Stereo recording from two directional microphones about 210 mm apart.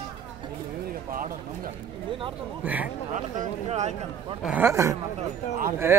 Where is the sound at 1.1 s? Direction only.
40° right (ahead or behind).